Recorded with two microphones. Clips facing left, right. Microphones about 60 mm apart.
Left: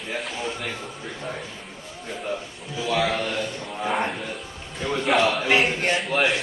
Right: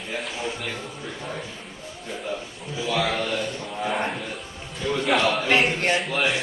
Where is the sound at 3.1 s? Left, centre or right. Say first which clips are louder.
Even; centre.